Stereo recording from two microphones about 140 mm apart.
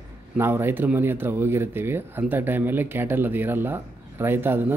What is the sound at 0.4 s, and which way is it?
Speech, 15° right (ahead or behind).